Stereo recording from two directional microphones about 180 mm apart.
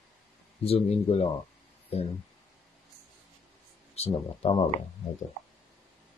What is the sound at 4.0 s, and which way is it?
Speech, 35° left (ahead or behind).